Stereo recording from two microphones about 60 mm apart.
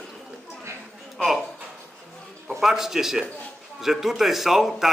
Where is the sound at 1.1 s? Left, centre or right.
Centre.